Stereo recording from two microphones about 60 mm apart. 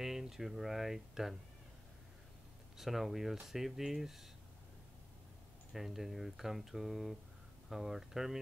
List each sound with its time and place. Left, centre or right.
0.0 s speech: centre
2.8 s speech: centre
5.7 s speech: centre